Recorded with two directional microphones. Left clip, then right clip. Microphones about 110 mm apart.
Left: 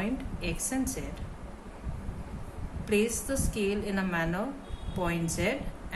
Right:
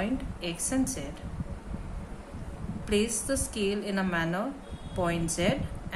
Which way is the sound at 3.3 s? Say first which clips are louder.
Right 1 dB; 30° right (ahead or behind).